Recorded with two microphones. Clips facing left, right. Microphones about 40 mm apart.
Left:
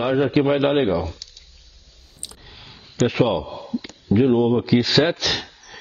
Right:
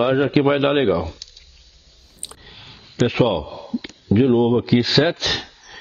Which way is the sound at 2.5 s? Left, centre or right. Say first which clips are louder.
Right 1 dB; centre.